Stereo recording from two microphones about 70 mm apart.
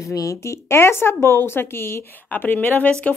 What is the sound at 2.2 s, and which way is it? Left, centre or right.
Speech, left.